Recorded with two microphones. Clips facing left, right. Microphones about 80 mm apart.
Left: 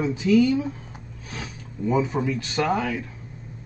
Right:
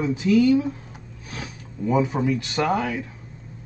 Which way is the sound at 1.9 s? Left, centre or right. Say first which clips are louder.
Right 2 dB; centre.